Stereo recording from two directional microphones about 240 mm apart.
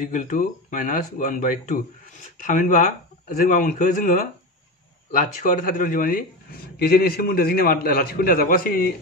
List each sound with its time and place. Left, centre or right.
0.1 s speech: left